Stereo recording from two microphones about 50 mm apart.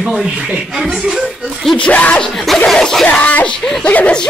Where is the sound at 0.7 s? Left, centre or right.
Centre.